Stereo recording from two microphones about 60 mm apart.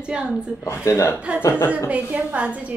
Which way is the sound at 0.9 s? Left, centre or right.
Left.